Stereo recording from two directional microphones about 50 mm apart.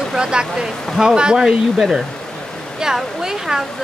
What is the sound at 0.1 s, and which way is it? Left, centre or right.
A woman's voice, centre.